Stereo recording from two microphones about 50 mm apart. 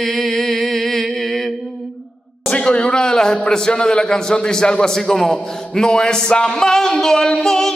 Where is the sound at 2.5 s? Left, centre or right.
Centre.